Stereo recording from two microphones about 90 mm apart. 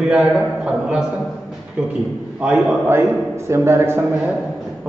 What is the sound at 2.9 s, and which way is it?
A man's voice, 30° right (ahead or behind).